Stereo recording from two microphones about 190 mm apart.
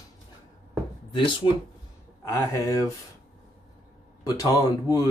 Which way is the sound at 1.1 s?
25° left (ahead or behind).